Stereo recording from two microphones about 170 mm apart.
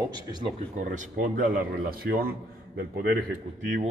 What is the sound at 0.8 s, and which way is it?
Speech, 50° right (ahead or behind).